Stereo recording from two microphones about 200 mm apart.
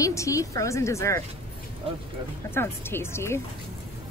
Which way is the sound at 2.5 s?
10° left (ahead or behind).